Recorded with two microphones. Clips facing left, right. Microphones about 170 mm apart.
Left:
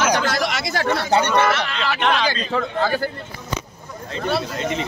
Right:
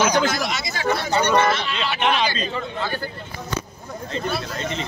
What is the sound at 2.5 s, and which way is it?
Speech, 75° left (ahead or behind).